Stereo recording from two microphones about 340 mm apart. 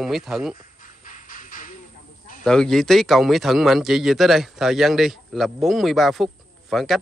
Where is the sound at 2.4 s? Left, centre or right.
Centre.